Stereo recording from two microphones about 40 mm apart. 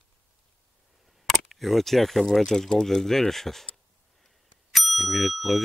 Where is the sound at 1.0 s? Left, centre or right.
Centre.